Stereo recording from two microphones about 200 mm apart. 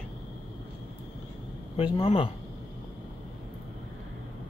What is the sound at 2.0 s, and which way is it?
Speech, 30° left (ahead or behind).